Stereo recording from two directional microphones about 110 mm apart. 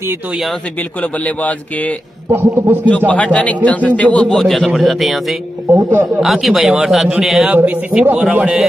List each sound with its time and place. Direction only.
1.0 s a man's voice: 15° left (ahead or behind)
2.3 s a man's voice: 15° right (ahead or behind)
3.1 s a man's voice: 10° left (ahead or behind)
5.9 s a man's voice: 20° right (ahead or behind)
6.2 s a man's voice: centre (ahead or behind)
7.5 s a man's voice: 15° right (ahead or behind)